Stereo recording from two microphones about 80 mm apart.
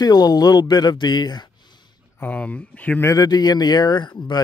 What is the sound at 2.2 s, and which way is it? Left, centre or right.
Speech, centre.